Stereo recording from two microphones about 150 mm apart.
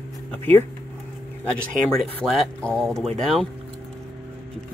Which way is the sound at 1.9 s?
5° left (ahead or behind).